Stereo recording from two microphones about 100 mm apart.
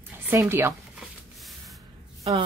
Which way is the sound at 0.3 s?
25° right (ahead or behind).